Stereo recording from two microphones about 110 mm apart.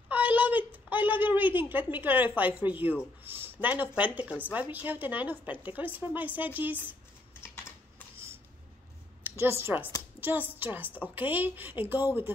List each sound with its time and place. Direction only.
0.1 s a woman's voice: 15° right (ahead or behind)
3.3 s a sound: 20° right (ahead or behind)
3.6 s a woman's voice: 15° right (ahead or behind)
9.2 s a woman's voice: 20° right (ahead or behind)